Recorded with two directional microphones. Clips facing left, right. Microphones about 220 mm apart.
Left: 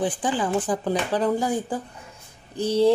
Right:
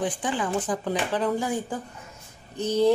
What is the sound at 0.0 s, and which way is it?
Speech, 30° left (ahead or behind).